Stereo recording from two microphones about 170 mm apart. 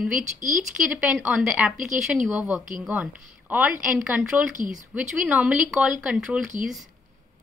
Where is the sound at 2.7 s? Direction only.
10° right (ahead or behind).